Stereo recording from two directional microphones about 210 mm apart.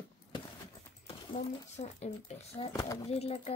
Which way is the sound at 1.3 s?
30° left (ahead or behind).